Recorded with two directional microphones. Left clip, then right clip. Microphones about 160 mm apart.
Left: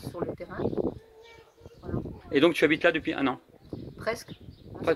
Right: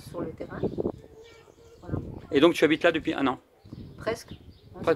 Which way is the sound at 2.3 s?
15° right (ahead or behind).